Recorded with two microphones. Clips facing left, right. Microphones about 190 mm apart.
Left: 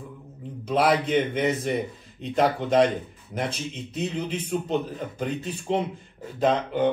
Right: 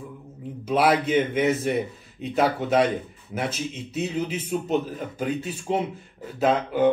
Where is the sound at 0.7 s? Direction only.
5° right (ahead or behind).